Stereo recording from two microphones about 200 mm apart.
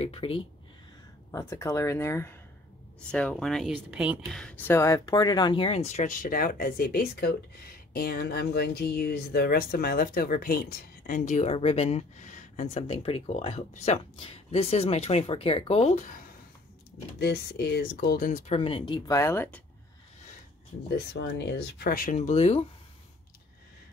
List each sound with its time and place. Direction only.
0.0 s speech: 30° left (ahead or behind)
1.3 s speech: 15° left (ahead or behind); by 4.4 s 5° right (ahead or behind)
4.4 s speech: 5° left (ahead or behind); by 16.3 s 40° left (ahead or behind)
17.2 s speech: 55° left (ahead or behind); by 19.6 s 10° left (ahead or behind)
21.1 s speech: 60° left (ahead or behind); by 22.6 s 30° left (ahead or behind)